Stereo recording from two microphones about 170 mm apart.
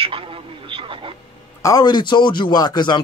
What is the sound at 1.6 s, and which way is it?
Speech, 20° left (ahead or behind).